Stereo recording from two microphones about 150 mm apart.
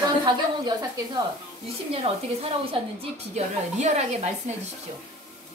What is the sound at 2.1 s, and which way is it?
Speech, 35° right (ahead or behind).